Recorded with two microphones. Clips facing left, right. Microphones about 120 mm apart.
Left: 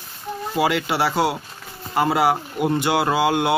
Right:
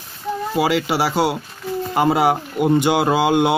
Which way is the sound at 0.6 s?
Centre (ahead or behind).